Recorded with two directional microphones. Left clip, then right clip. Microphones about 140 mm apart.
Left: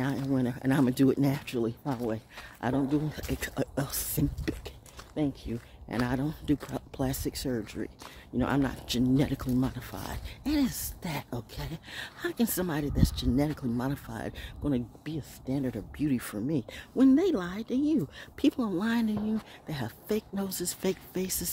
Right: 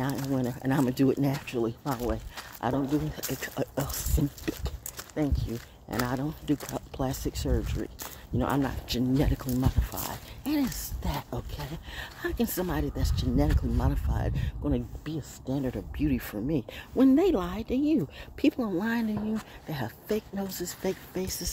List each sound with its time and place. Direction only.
0.0 s speech: 40° left (ahead or behind); by 17.9 s 20° left (ahead or behind)
18.4 s speech: 35° left (ahead or behind); by 21.5 s 55° left (ahead or behind)